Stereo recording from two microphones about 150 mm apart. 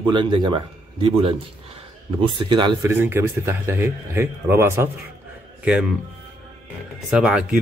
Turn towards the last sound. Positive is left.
turn(degrees=-5)  # may be behind; listen again after turning